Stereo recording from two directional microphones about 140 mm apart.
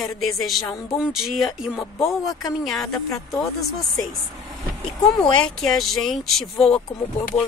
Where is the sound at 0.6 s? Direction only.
20° left (ahead or behind).